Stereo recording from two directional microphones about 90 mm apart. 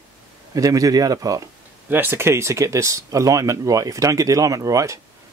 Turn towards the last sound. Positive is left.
turn(degrees=-35)  # may be behind; listen again after turning